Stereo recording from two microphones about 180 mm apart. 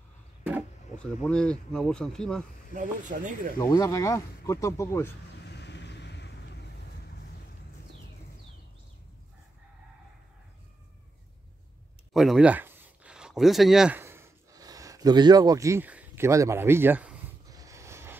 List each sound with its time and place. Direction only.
0.9 s speech: 5° left (ahead or behind)
2.7 s speech: 45° right (ahead or behind)
3.5 s speech: 20° left (ahead or behind)
5.4 s vehicle: 70° left (ahead or behind)
12.1 s a sound: centre (ahead or behind)
17.5 s a sound: 20° right (ahead or behind)